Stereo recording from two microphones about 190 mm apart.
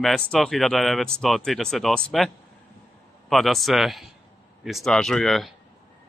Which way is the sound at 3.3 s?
Centre (ahead or behind).